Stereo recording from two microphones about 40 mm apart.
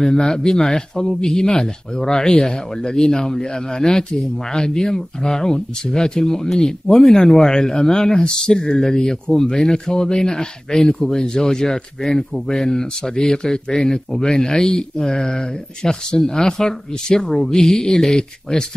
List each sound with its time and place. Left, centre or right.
0.0 s speech: centre